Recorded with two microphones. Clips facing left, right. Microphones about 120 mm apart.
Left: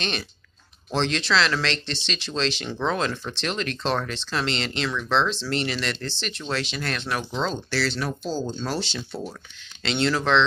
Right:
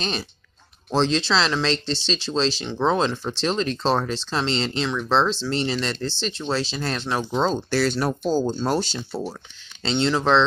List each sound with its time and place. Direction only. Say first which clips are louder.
0.0 s speech: right 2 dB; 35° right (ahead or behind)
9.8 s speech: right 2 dB; 25° right (ahead or behind)